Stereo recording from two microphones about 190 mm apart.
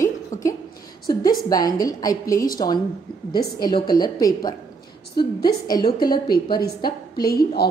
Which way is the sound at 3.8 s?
20° left (ahead or behind).